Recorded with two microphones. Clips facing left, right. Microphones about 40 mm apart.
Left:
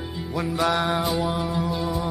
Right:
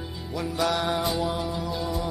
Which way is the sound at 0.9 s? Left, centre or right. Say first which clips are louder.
Left 2 dB; centre.